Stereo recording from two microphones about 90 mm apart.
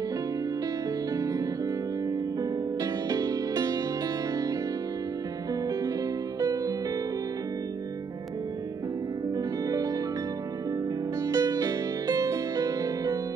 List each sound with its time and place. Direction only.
2.8 s music: 40° right (ahead or behind)
6.4 s music: 45° right (ahead or behind)
9.7 s music: 45° right (ahead or behind)
11.2 s music: 45° right (ahead or behind)